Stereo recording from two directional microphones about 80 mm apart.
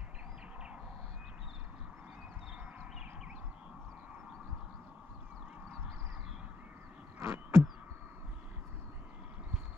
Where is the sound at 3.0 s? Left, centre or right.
Centre.